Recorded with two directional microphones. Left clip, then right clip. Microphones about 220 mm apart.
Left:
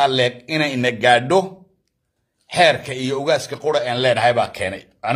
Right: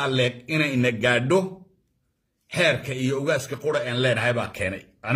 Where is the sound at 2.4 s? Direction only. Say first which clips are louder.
Left 7 dB; 15° right (ahead or behind).